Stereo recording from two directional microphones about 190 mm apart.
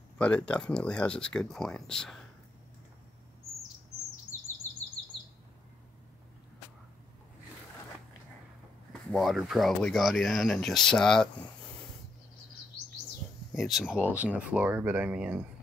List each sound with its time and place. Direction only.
0.2 s speech: 5° left (ahead or behind)
9.1 s speech: centre (ahead or behind)
13.5 s speech: centre (ahead or behind)